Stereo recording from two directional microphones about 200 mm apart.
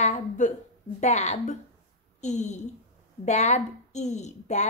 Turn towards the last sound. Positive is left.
turn(degrees=35)  # may be behind; listen again after turning